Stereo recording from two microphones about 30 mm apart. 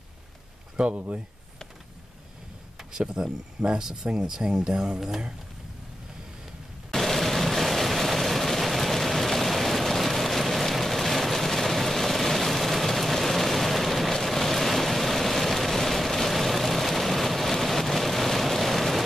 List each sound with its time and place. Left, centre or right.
0.8 s speech: right
2.8 s speech: right
6.9 s a sound: centre